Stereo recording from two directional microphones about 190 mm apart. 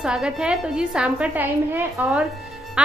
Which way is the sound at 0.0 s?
5° right (ahead or behind).